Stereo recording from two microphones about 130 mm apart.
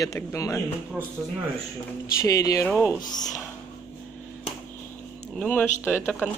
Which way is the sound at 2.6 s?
10° left (ahead or behind).